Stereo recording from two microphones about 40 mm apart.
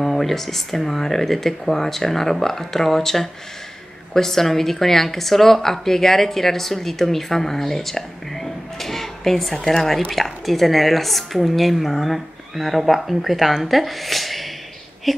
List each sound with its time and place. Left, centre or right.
0.0 s a woman's voice: centre